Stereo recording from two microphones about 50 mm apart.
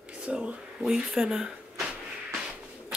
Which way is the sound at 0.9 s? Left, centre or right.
Centre.